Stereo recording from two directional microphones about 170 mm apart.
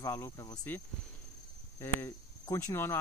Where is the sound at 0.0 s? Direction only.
20° left (ahead or behind).